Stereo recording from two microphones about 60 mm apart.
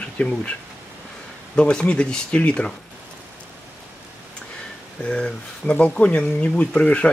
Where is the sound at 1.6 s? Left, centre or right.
Centre.